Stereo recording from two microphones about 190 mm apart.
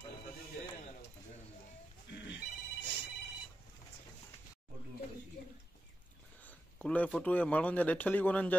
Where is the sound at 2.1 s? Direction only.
65° left (ahead or behind).